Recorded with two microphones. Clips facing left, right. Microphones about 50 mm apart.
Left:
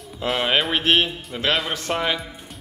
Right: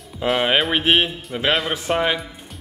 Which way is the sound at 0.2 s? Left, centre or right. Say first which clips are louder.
Right 3 dB; centre.